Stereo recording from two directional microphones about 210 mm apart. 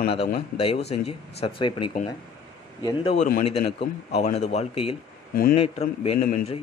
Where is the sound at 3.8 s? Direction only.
30° left (ahead or behind).